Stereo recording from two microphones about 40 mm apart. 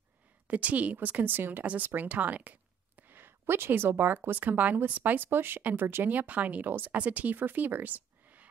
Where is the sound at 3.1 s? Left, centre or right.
Right.